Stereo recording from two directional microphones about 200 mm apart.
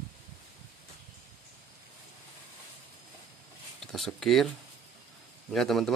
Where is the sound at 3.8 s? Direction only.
Centre (ahead or behind).